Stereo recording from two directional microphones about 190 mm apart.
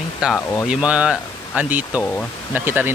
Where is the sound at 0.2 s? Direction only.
5° right (ahead or behind).